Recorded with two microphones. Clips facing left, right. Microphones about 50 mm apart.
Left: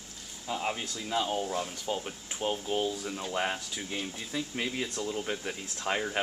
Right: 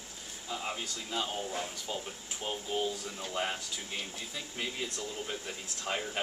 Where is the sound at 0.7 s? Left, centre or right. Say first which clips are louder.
Left 4 dB; centre.